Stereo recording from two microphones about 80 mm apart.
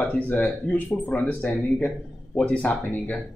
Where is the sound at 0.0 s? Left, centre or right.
Centre.